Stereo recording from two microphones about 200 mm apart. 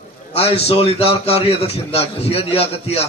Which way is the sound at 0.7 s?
30° left (ahead or behind).